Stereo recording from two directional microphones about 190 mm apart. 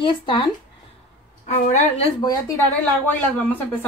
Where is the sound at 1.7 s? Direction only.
35° left (ahead or behind).